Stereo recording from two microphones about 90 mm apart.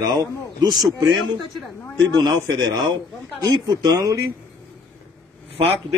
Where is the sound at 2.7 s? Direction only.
50° right (ahead or behind).